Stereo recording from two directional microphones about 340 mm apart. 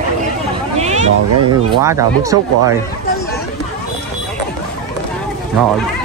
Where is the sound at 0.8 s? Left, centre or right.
Centre.